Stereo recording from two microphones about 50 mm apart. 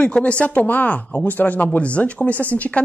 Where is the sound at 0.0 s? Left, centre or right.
Left.